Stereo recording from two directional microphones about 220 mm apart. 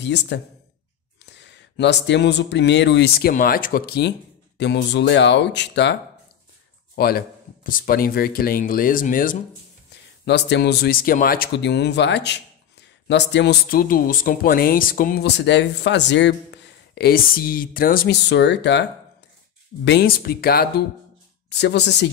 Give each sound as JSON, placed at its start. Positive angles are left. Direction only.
{"t": 0.0, "sound": "speech", "side_deg": 50}
{"t": 7.0, "sound": "speech", "side_deg": 45}
{"t": 10.2, "sound": "speech", "side_deg": 50}